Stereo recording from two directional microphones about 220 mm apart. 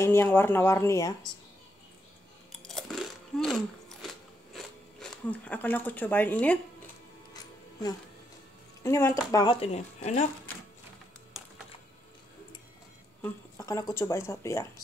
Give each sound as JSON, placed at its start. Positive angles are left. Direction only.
{"t": 0.0, "sound": "speech", "side_deg": 10}
{"t": 2.6, "sound": "biting", "side_deg": 0}
{"t": 8.8, "sound": "speech", "side_deg": 15}
{"t": 13.2, "sound": "a sound", "side_deg": 15}
{"t": 13.9, "sound": "speech", "side_deg": 10}